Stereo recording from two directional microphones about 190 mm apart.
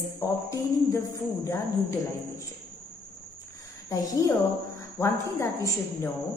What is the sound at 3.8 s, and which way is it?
A woman's voice, 15° left (ahead or behind).